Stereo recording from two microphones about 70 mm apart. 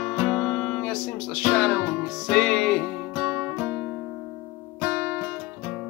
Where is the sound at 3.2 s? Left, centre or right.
Centre.